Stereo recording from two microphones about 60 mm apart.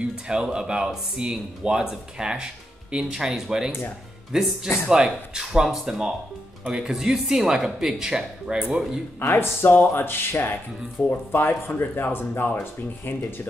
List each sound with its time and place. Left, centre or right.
0.0 s speech: centre
9.2 s speech: left